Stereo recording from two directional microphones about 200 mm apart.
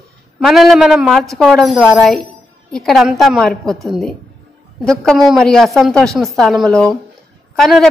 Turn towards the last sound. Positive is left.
turn(degrees=0)  # may be behind; listen again after turning